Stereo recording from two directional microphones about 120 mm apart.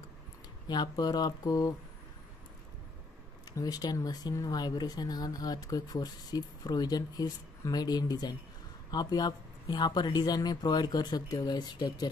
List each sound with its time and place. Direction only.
0.7 s speech: 35° left (ahead or behind)
3.5 s speech: 35° left (ahead or behind)